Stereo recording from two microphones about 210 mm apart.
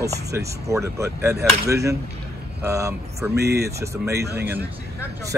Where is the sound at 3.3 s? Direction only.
50° right (ahead or behind).